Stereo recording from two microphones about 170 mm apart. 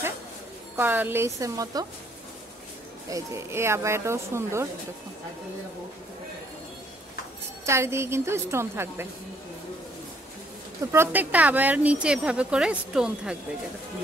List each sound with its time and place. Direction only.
0.7 s speech: 10° right (ahead or behind)
3.1 s speech: 15° right (ahead or behind)
7.6 s speech: 15° right (ahead or behind)
10.9 s speech: 10° right (ahead or behind)